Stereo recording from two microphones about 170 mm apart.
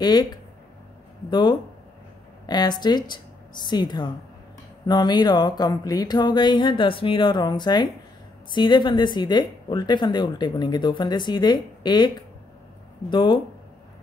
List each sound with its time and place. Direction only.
0.0 s speech: 25° left (ahead or behind)